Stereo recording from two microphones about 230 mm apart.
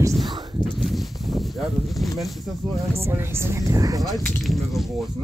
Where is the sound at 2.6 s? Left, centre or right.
Right.